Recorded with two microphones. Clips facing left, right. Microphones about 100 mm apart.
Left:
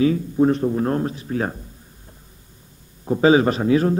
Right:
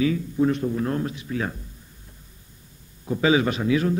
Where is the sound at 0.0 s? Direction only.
40° left (ahead or behind).